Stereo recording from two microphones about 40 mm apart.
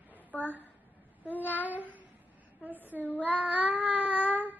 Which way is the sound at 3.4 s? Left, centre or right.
Right.